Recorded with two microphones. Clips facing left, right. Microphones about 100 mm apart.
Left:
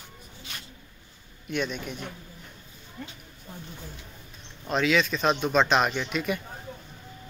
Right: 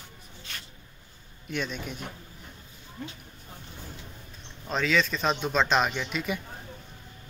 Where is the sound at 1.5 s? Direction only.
Centre (ahead or behind).